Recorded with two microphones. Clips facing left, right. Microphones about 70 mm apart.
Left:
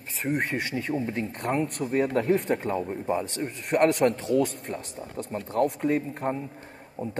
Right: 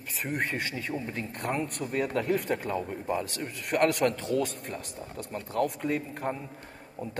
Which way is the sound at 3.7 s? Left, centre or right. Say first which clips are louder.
Left 4 dB; left.